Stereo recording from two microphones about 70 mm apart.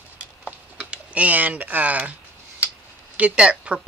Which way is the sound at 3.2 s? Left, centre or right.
Centre.